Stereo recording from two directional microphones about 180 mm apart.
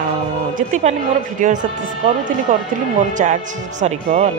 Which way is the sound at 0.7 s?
35° right (ahead or behind).